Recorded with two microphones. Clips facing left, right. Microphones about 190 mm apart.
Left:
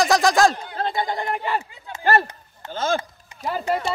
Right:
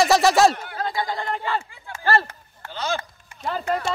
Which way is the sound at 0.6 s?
20° left (ahead or behind).